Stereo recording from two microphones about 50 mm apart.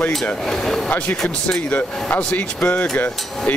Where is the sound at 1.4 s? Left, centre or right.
Left.